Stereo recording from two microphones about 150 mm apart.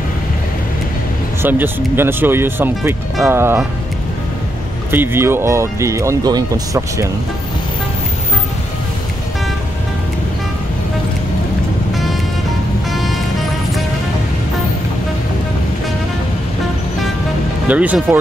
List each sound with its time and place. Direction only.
1.4 s speech: 15° right (ahead or behind)
4.9 s speech: 15° right (ahead or behind)
11.9 s music: centre (ahead or behind)
17.6 s speech: 10° right (ahead or behind)